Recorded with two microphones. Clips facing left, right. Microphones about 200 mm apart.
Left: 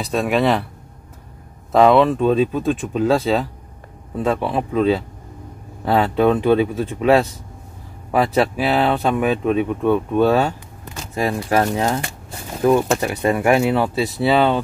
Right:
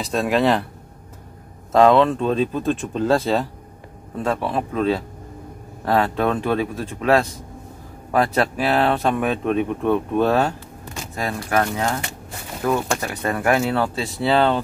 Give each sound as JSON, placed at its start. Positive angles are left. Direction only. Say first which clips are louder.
{"t": 0.0, "sound": "speech", "louder": "left 1 dB", "side_deg": 0}
{"t": 1.7, "sound": "speech", "louder": "left 1 dB", "side_deg": 5}
{"t": 4.2, "sound": "speech", "louder": "left 3 dB", "side_deg": 15}
{"t": 11.1, "sound": "speech", "louder": "left 4 dB", "side_deg": 20}